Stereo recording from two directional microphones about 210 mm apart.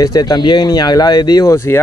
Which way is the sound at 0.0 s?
20° left (ahead or behind).